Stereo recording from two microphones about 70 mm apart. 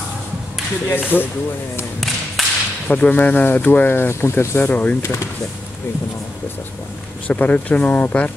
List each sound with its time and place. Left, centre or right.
0.8 s speech: left
2.4 s whip: centre
2.9 s speech: left
7.2 s speech: left